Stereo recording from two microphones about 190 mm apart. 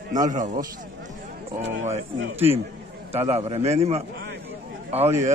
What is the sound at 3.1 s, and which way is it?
Speech, 35° right (ahead or behind).